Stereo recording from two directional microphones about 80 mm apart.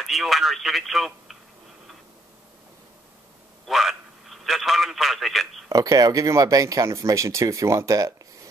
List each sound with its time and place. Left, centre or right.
0.0 s speech: centre
3.6 s a man's voice: centre
5.7 s speech: right